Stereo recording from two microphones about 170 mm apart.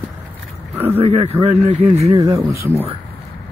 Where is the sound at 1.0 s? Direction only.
35° right (ahead or behind).